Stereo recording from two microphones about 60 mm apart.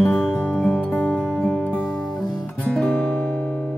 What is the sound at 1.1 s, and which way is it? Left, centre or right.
Music, centre.